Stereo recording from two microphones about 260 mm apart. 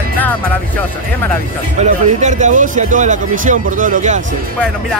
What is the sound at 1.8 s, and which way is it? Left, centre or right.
A man's voice, right.